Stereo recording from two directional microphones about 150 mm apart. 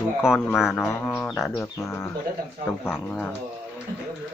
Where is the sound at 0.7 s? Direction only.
15° left (ahead or behind).